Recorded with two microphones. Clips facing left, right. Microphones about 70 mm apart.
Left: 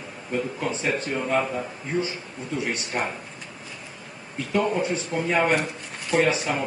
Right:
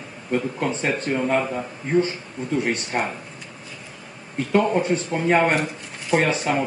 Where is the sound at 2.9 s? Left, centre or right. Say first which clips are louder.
Right 2 dB; right.